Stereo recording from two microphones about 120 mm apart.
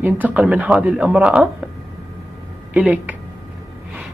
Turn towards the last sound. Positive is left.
turn(degrees=-10)  # may be behind; listen again after turning